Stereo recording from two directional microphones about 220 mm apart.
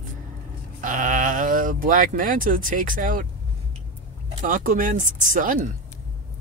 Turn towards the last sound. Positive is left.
turn(degrees=-35)  # may be behind; listen again after turning